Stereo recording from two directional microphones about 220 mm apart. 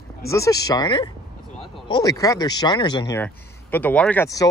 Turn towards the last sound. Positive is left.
turn(degrees=15)  # may be behind; listen again after turning